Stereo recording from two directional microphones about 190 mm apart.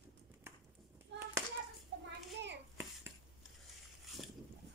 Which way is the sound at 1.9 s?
65° right (ahead or behind).